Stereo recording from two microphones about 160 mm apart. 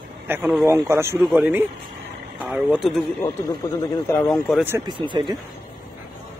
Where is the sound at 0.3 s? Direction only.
10° right (ahead or behind).